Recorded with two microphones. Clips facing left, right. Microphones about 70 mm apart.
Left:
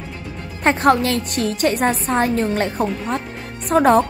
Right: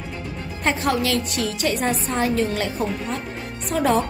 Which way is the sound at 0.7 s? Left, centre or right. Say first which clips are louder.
Left 6 dB; left.